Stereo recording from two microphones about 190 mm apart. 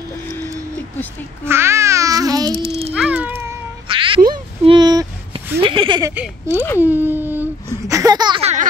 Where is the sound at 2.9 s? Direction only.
5° right (ahead or behind).